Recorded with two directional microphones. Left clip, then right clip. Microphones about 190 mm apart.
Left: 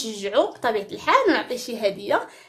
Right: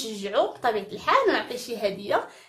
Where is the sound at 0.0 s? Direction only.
40° left (ahead or behind).